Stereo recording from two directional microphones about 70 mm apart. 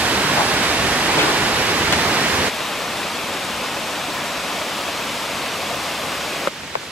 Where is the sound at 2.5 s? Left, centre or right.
Centre.